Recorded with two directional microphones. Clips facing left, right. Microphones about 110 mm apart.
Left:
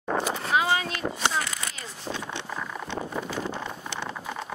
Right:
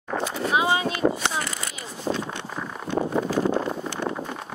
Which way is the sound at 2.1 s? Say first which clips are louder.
Right 8 dB; 50° right (ahead or behind).